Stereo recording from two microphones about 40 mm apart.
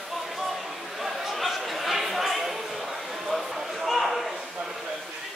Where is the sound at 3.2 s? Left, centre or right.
Centre.